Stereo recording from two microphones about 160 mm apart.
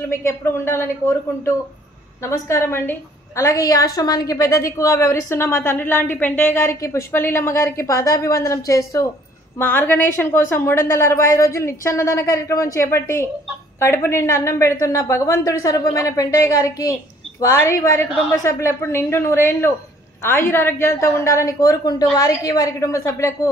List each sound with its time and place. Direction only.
0.1 s a woman's voice: 15° left (ahead or behind)